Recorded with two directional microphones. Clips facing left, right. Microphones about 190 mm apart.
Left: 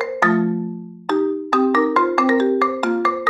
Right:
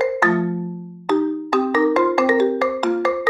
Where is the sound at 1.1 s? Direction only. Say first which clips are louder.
Even; 10° right (ahead or behind).